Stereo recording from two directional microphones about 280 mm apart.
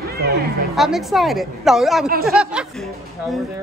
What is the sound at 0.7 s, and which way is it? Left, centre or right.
A woman's voice, centre.